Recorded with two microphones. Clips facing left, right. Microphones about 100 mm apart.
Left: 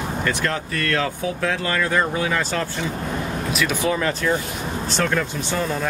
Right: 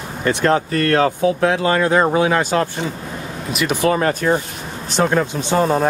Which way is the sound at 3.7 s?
50° right (ahead or behind).